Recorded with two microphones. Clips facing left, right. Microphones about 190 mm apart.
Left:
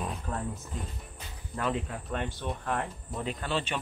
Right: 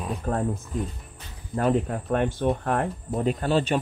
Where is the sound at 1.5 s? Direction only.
45° right (ahead or behind).